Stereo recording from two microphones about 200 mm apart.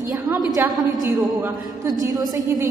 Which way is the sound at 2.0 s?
15° right (ahead or behind).